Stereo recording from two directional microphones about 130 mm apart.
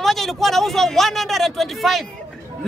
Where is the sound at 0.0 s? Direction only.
Centre (ahead or behind).